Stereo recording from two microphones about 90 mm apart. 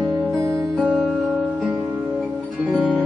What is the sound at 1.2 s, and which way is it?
Music, 15° right (ahead or behind).